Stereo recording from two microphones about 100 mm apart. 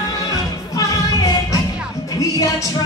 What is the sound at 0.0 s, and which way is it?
Music, 35° left (ahead or behind).